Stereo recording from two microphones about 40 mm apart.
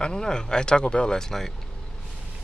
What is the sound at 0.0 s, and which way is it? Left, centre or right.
Speech, centre.